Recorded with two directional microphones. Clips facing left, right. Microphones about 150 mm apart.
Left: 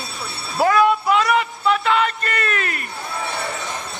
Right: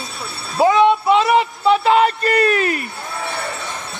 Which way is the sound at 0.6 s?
20° right (ahead or behind).